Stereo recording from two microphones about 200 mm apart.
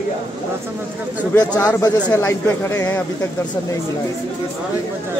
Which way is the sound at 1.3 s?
15° left (ahead or behind).